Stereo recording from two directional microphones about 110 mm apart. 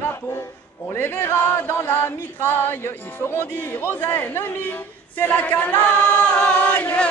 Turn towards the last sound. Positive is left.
turn(degrees=15)  # may be behind; listen again after turning